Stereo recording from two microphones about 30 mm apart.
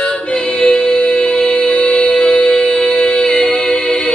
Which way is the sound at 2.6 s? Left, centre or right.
Left.